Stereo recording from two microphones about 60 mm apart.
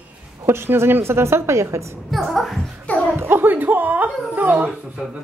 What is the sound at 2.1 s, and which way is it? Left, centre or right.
Speech, centre.